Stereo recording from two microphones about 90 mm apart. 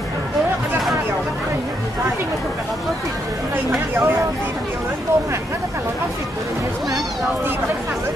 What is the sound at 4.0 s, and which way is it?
Speech, 25° right (ahead or behind).